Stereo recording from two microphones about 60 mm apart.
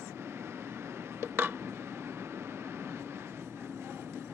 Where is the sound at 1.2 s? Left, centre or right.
Right.